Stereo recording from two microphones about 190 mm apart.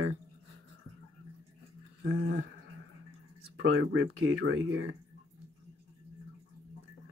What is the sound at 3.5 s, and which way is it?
Speech, 80° right.